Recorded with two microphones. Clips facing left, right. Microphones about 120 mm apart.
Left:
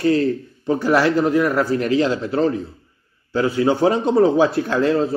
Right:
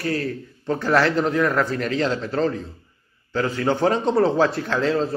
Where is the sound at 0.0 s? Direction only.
25° left (ahead or behind).